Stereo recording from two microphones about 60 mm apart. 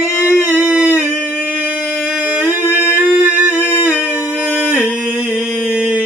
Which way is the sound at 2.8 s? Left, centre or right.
Right.